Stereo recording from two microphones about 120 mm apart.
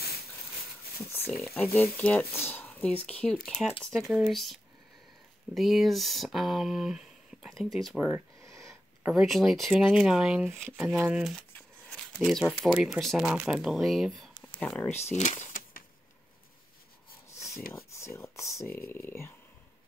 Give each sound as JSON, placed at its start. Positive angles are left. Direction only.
{"t": 1.5, "sound": "speech", "side_deg": 20}
{"t": 8.1, "sound": "a sound", "side_deg": -25}
{"t": 9.0, "sound": "speech", "side_deg": 0}
{"t": 10.5, "sound": "speech", "side_deg": 10}
{"t": 11.0, "sound": "speech", "side_deg": -10}
{"t": 11.5, "sound": "speech", "side_deg": 5}
{"t": 14.6, "sound": "speech", "side_deg": 10}
{"t": 14.9, "sound": "speech", "side_deg": 70}
{"t": 17.4, "sound": "speech", "side_deg": 25}